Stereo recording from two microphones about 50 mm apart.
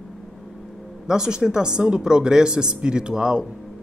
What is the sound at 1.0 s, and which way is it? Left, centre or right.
Speech, centre.